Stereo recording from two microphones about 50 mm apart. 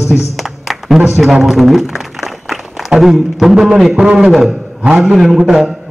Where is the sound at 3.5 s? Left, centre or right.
Centre.